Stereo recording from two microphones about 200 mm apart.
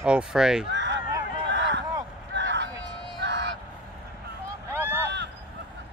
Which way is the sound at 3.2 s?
60° right (ahead or behind).